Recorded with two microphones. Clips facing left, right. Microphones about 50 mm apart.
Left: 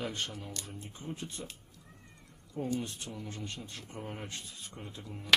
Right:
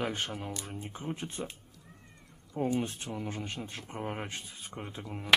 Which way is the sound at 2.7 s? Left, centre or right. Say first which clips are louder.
Right 4 dB; right.